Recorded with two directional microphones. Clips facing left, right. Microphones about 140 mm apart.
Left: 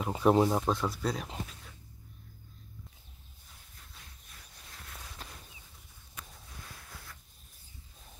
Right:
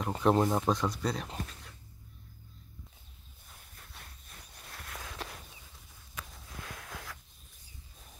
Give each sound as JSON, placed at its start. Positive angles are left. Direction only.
{"t": 0.0, "sound": "speech", "side_deg": 5}
{"t": 4.6, "sound": "walk", "side_deg": -80}
{"t": 6.1, "sound": "a sound", "side_deg": -90}